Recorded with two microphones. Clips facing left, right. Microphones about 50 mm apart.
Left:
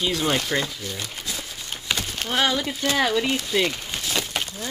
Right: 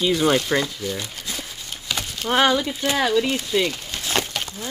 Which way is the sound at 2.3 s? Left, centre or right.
Right.